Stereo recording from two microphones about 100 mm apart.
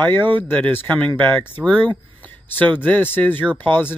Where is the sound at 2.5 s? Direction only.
15° left (ahead or behind).